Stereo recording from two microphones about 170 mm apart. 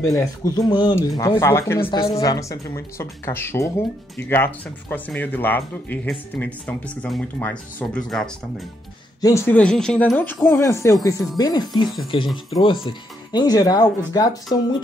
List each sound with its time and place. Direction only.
0.0 s speech: 20° left (ahead or behind)
1.9 s speech: 25° left (ahead or behind); by 8.3 s 5° left (ahead or behind)
9.2 s speech: 15° left (ahead or behind)